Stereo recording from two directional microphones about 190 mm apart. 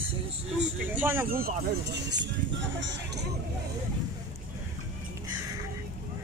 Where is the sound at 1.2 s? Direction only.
50° right (ahead or behind); by 3.3 s 70° right (ahead or behind).